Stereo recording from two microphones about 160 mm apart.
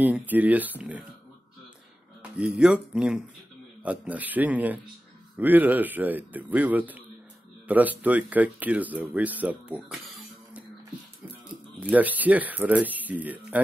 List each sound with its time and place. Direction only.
0.3 s speech: 10° right (ahead or behind)
2.3 s speech: 5° right (ahead or behind)
11.8 s speech: 10° right (ahead or behind)